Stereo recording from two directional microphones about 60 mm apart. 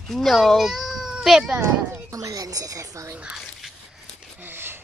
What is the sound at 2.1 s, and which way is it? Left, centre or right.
Speech, right.